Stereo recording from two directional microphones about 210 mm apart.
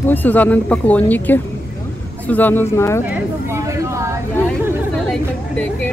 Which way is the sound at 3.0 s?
15° right (ahead or behind).